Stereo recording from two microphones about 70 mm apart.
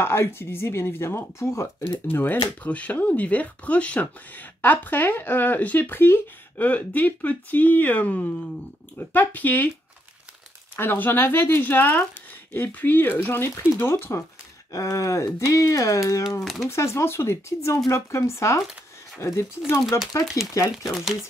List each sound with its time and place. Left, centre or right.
0.0 s speech: left
1.9 s speech: left
6.6 s speech: left
10.8 s speech: left
14.7 s speech: left
20.5 s speech: left